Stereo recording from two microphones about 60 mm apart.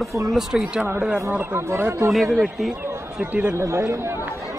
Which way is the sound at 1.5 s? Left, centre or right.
Right.